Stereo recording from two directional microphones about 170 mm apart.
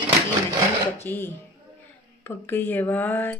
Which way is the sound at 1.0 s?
10° left (ahead or behind).